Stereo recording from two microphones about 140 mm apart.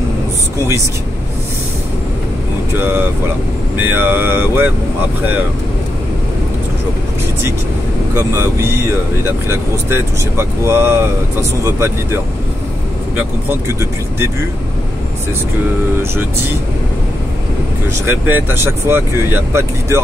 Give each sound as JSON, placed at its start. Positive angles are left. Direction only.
{"t": 3.7, "sound": "speech", "side_deg": -15}
{"t": 8.1, "sound": "speech", "side_deg": -20}
{"t": 13.7, "sound": "speech", "side_deg": -20}
{"t": 18.0, "sound": "speech", "side_deg": -15}